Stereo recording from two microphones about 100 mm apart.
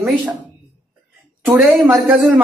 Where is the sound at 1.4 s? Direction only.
5° right (ahead or behind).